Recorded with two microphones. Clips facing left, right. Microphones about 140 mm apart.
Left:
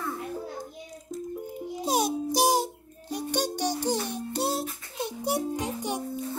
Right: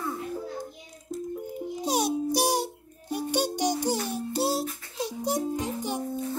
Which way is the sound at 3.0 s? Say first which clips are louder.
Right 2 dB; 10° right (ahead or behind).